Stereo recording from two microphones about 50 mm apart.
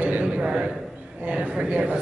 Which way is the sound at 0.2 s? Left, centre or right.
Centre.